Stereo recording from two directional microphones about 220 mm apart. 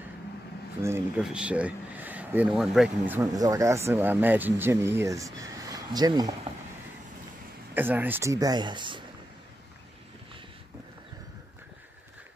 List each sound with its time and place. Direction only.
0.8 s speech: 10° right (ahead or behind)
7.7 s speech: 10° right (ahead or behind)